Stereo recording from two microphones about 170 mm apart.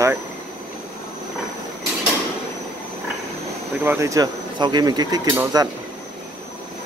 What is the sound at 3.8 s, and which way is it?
Speech, 15° right (ahead or behind).